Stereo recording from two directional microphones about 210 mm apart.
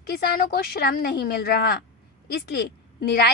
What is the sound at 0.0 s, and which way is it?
A woman's voice, 50° left (ahead or behind).